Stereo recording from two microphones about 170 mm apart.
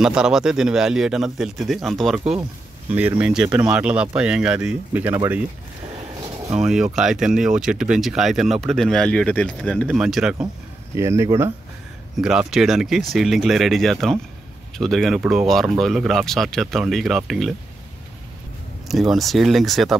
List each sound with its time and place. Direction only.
0.0 s speech: 5° right (ahead or behind)
6.6 s speech: 5° right (ahead or behind)
11.0 s speech: 15° right (ahead or behind)
12.2 s speech: 5° right (ahead or behind)
18.9 s speech: centre (ahead or behind)